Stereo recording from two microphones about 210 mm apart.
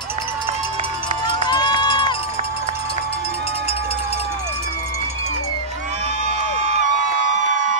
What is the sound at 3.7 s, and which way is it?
Run, 25° left (ahead or behind).